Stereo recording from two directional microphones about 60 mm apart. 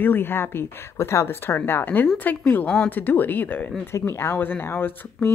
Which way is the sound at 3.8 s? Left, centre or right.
Left.